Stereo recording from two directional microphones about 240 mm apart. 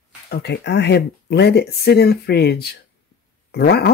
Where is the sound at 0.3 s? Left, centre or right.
Left.